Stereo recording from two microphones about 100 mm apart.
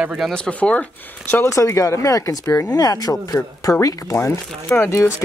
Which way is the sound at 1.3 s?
30° left (ahead or behind).